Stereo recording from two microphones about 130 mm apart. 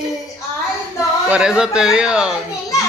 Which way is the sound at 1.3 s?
5° right (ahead or behind).